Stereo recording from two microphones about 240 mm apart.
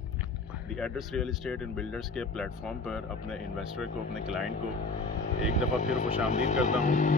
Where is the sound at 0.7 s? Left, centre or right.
Centre.